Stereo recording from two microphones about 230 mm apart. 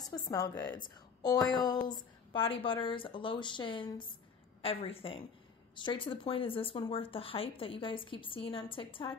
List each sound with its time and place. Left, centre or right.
0.1 s a woman's voice: centre